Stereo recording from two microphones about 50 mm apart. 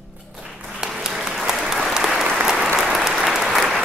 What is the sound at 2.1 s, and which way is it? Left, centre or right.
Applause, centre.